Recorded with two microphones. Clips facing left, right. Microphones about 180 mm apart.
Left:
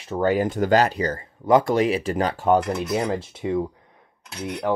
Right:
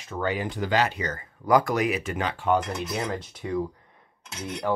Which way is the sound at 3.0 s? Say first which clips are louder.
Left 6 dB; 25° left (ahead or behind).